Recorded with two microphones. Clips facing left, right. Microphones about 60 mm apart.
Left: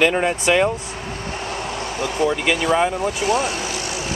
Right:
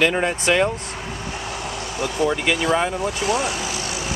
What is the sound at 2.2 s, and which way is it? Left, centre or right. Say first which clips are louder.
Speech: left 1 dB; centre.